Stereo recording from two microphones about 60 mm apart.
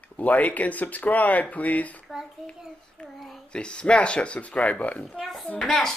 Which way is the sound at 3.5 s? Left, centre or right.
Centre.